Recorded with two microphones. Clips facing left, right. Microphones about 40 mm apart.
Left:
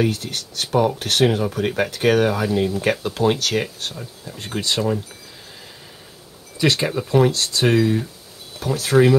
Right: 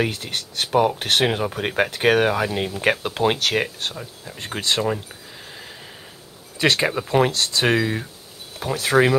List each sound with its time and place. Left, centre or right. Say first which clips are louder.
0.0 s speech: left 2 dB; right
6.6 s speech: even; right